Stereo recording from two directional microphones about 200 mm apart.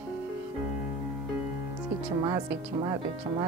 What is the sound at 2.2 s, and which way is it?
Speech, 20° right (ahead or behind).